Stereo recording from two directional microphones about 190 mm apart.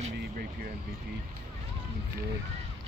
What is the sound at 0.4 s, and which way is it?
Vehicle, 50° right (ahead or behind).